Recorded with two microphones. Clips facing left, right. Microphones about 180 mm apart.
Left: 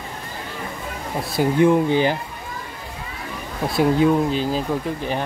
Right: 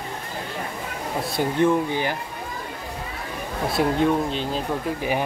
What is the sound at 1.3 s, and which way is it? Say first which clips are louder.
Speech: left 4 dB; 5° left (ahead or behind).